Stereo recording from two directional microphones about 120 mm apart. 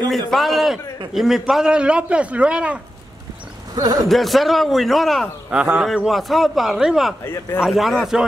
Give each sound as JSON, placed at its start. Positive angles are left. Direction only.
{"t": 0.1, "sound": "a man's voice", "side_deg": 0}
{"t": 3.7, "sound": "speech", "side_deg": -30}
{"t": 4.1, "sound": "a man's voice", "side_deg": 0}
{"t": 5.5, "sound": "a man's voice", "side_deg": -10}
{"t": 7.2, "sound": "speech", "side_deg": 20}
{"t": 7.6, "sound": "a man's voice", "side_deg": 0}